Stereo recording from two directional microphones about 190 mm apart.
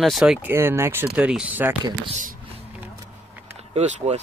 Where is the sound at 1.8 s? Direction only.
30° right (ahead or behind).